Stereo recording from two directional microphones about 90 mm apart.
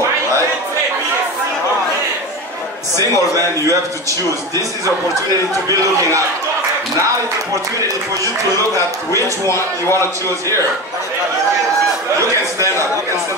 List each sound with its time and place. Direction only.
3.0 s a man's voice: 40° right (ahead or behind)
5.5 s a man's voice: 35° right (ahead or behind)